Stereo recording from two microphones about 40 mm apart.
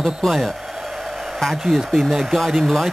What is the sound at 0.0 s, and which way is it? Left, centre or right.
Speech, centre.